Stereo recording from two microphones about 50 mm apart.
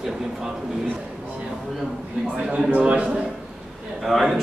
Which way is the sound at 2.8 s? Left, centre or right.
Right.